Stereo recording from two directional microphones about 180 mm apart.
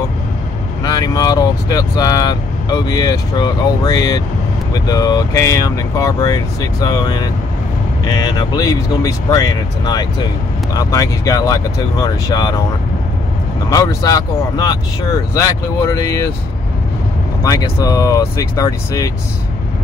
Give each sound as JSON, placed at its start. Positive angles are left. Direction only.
{"t": 0.8, "sound": "speech", "side_deg": 20}
{"t": 13.7, "sound": "speech", "side_deg": 20}
{"t": 17.4, "sound": "speech", "side_deg": 20}